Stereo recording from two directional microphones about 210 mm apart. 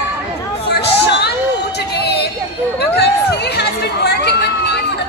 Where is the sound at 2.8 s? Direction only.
50° left (ahead or behind).